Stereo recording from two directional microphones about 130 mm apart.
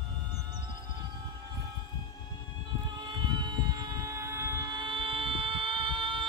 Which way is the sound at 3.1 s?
35° right (ahead or behind).